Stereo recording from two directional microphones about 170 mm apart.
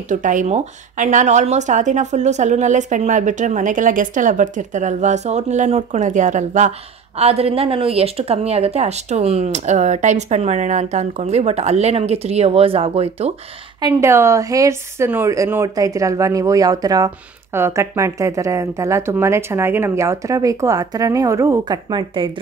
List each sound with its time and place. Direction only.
0.1 s a woman's voice: 50° right (ahead or behind)
13.7 s a woman's voice: 20° right (ahead or behind)